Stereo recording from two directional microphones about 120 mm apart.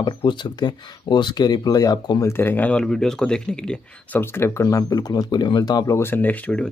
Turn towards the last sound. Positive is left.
turn(degrees=10)  # may be behind; listen again after turning